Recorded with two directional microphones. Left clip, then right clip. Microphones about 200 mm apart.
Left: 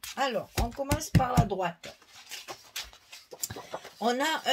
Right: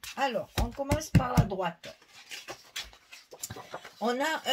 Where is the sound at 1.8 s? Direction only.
20° left (ahead or behind).